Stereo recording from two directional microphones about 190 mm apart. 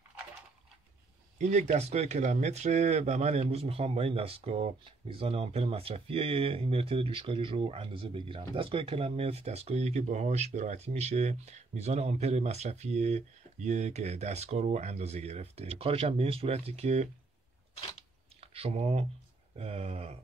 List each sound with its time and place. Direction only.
1.4 s speech: 40° right (ahead or behind)
18.4 s speech: 30° right (ahead or behind)